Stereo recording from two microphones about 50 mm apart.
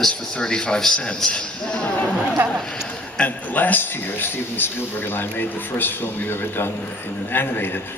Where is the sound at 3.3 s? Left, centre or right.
Left.